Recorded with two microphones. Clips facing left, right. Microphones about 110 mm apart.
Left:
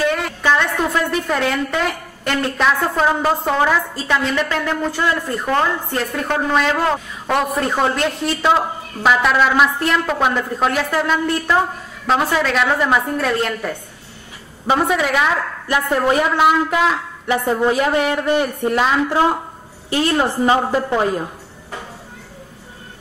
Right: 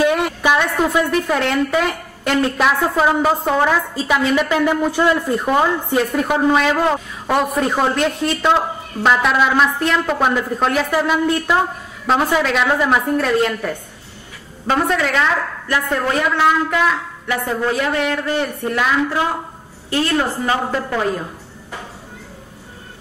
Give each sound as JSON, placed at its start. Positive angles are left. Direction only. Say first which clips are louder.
{"t": 0.0, "sound": "a woman's voice", "louder": "right 3 dB", "side_deg": -15}
{"t": 14.8, "sound": "a woman's voice", "louder": "right 1 dB", "side_deg": 5}
{"t": 19.9, "sound": "a woman's voice", "louder": "left 1 dB", "side_deg": 15}